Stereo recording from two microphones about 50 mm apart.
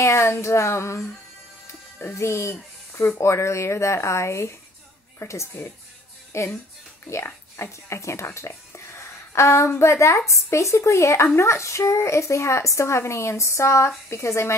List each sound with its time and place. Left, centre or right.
0.0 s a woman's voice: left
2.1 s speech: left
3.2 s a woman's voice: left
5.2 s a woman's voice: left
5.6 s speech: left
6.3 s a woman's voice: left
7.1 s a woman's voice: left